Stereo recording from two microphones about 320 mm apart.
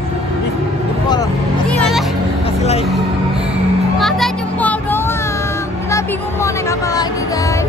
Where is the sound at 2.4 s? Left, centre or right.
Centre.